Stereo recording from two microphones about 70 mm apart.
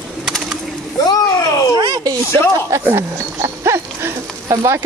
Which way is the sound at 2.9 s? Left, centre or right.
Right.